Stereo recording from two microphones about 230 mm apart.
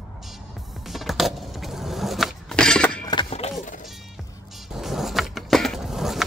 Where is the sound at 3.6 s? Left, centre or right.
Left.